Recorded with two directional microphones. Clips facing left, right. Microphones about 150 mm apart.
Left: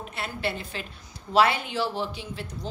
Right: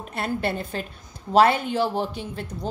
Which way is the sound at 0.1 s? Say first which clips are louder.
Right 6 dB; 50° right (ahead or behind).